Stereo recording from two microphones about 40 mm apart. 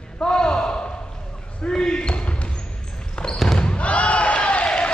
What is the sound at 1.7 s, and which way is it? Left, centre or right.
Basketball bounce, left.